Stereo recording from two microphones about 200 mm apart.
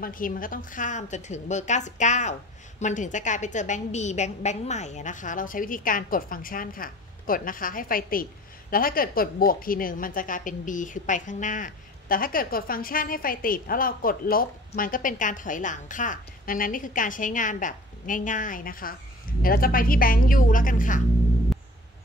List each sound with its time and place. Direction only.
0.0 s a woman's voice: 45° left (ahead or behind)